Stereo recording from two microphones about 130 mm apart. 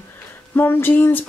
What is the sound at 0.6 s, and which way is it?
Speech, 15° left (ahead or behind).